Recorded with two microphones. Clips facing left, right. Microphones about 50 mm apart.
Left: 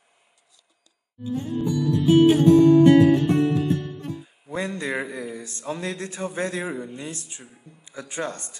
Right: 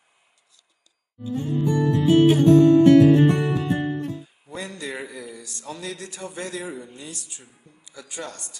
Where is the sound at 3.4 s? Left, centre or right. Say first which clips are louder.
Left 3 dB; centre.